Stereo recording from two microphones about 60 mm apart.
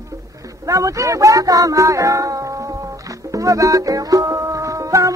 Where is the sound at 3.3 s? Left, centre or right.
Right.